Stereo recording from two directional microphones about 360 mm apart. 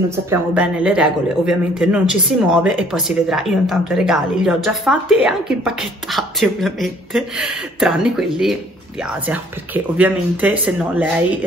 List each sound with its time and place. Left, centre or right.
0.1 s speech: centre